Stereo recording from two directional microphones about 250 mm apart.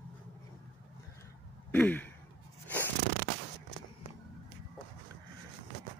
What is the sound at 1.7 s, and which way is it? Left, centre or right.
Sigh, centre.